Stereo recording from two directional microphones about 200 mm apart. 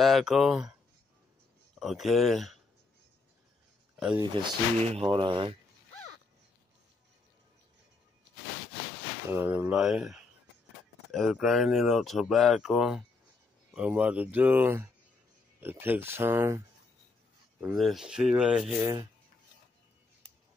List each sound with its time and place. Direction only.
0.0 s speech: centre (ahead or behind)
1.8 s speech: centre (ahead or behind)
4.2 s speech: 25° right (ahead or behind)
9.3 s speech: 10° right (ahead or behind)